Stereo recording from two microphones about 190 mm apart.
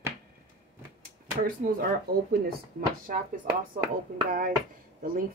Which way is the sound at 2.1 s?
55° right (ahead or behind).